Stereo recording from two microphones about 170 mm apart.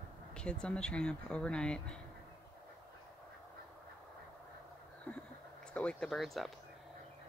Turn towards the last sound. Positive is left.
turn(degrees=0)  # may be behind; listen again after turning